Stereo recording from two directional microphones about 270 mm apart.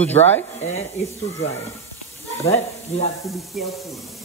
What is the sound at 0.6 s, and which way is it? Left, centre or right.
Speech, left.